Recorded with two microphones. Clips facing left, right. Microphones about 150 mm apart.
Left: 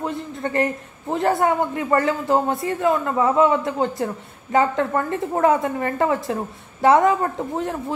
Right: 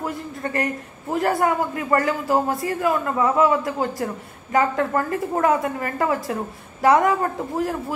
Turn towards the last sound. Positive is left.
turn(degrees=25)  # may be behind; listen again after turning